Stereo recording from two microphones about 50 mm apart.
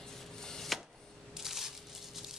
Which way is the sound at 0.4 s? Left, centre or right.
Centre.